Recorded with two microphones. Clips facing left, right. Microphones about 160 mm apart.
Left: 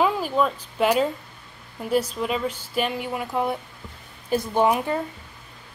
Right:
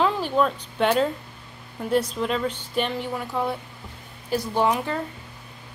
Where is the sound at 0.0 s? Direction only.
5° left (ahead or behind).